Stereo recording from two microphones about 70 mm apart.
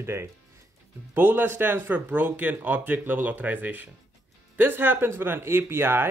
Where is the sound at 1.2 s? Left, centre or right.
Right.